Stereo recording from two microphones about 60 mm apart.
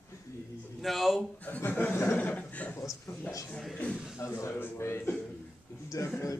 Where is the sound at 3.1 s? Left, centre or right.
Left.